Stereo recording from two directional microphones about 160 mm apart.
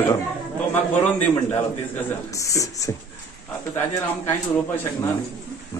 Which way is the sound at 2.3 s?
20° left (ahead or behind).